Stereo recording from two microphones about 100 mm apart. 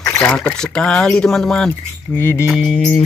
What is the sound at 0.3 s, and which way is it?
Speech, 5° left (ahead or behind).